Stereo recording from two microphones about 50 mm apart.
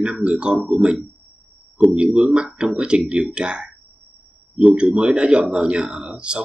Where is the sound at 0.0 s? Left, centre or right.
Centre.